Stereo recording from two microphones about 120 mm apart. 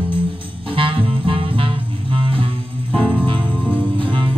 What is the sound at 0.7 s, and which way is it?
Music, 45° right (ahead or behind).